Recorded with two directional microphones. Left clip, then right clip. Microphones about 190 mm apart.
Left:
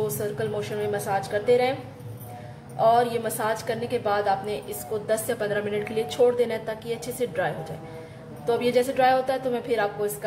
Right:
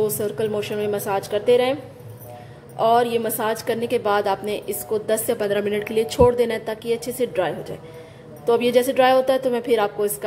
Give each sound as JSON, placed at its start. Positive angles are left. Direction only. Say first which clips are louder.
{"t": 0.0, "sound": "a woman's voice", "louder": "right 5 dB", "side_deg": -40}
{"t": 2.8, "sound": "a woman's voice", "louder": "right 3 dB", "side_deg": -40}